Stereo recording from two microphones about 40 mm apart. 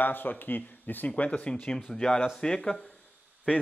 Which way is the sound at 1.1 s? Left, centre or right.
Left.